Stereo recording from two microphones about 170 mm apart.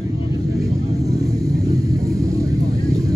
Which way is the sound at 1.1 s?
20° right (ahead or behind).